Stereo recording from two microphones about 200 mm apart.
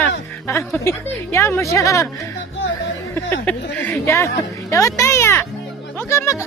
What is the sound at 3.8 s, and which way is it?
Speech, 15° left (ahead or behind).